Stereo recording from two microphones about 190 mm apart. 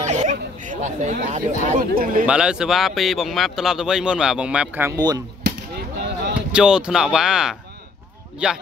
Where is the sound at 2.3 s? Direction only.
5° right (ahead or behind).